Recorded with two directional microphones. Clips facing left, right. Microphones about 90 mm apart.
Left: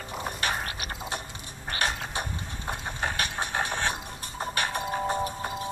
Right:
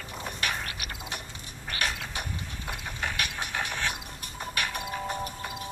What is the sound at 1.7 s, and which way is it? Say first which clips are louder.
Mechanisms: left 3 dB; 35° left (ahead or behind).